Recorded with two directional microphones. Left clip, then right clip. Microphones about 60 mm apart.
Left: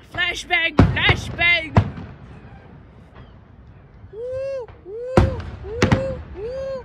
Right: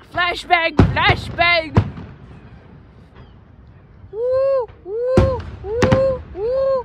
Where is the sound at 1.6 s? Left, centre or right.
Right.